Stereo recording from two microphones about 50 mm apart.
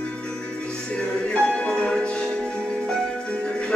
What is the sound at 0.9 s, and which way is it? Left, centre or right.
Music, centre.